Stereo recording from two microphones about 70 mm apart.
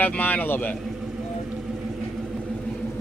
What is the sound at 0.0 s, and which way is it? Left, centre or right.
Speech, left.